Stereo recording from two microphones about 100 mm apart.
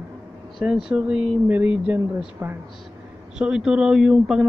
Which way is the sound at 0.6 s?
10° right (ahead or behind).